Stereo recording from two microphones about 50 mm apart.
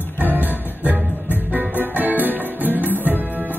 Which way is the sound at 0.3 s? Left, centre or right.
Right.